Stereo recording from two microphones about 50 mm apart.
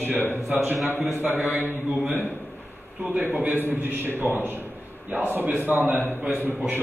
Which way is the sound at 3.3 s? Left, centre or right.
Right.